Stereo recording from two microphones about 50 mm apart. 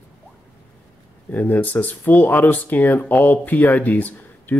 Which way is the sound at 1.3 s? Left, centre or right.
Left.